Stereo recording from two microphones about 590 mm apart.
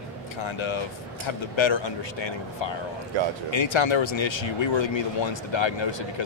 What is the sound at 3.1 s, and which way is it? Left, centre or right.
Speech, right.